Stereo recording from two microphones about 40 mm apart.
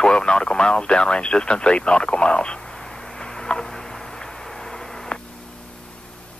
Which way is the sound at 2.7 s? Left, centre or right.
Centre.